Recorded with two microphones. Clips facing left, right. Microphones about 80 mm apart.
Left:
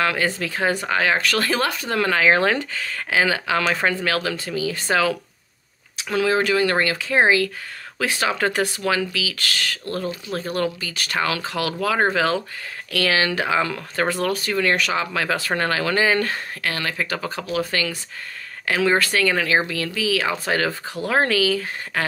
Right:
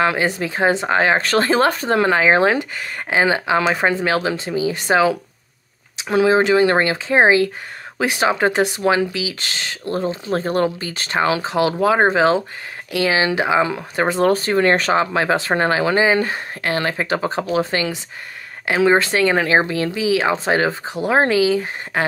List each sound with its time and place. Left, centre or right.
0.0 s speech: right
2.0 s speech: right
14.2 s speech: right